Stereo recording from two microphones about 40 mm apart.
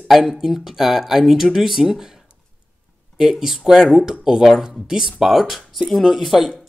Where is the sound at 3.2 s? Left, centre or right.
Centre.